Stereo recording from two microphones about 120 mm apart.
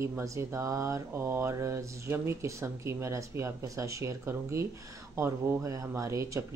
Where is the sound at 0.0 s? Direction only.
25° right (ahead or behind).